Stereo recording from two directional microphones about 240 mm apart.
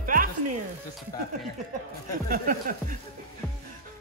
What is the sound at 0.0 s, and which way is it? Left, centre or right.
Music, right.